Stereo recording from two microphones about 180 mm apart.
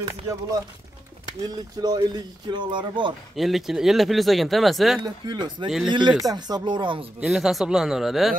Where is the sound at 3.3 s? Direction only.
Centre (ahead or behind).